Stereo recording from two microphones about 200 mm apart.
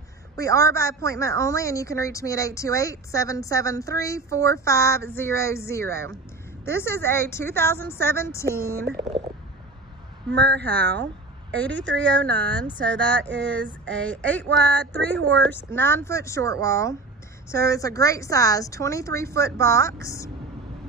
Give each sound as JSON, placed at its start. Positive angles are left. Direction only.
{"t": 0.4, "sound": "a woman's voice", "side_deg": 15}
{"t": 10.3, "sound": "speech", "side_deg": -60}
{"t": 10.6, "sound": "a woman's voice", "side_deg": 10}
{"t": 11.7, "sound": "speech", "side_deg": -65}
{"t": 12.2, "sound": "a woman's voice", "side_deg": 5}
{"t": 12.9, "sound": "speech", "side_deg": -65}
{"t": 13.6, "sound": "a woman's voice", "side_deg": 5}